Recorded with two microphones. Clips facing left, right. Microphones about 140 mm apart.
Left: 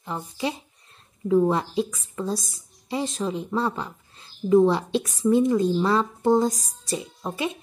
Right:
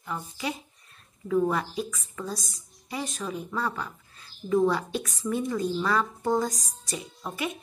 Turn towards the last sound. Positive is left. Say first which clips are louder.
# left 4 dB
turn(degrees=25)  # may be behind; listen again after turning